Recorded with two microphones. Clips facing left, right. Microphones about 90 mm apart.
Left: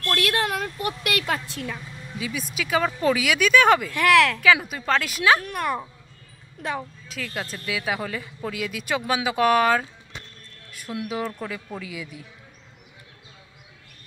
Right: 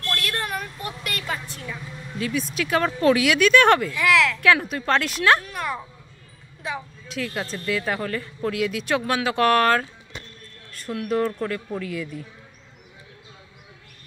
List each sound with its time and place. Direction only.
0.1 s a woman's voice: 90° left
2.1 s speech: 5° left (ahead or behind)
3.9 s speech: 55° left (ahead or behind)
4.6 s speech: centre (ahead or behind)
5.4 s speech: 50° left (ahead or behind)
7.1 s speech: centre (ahead or behind)